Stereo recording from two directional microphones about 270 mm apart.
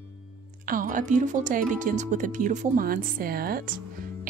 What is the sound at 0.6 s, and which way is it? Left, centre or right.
A woman's voice, right.